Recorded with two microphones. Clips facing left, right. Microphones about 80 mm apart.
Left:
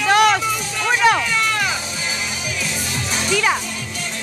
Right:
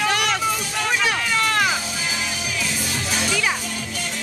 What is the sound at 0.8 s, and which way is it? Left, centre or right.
Music, left.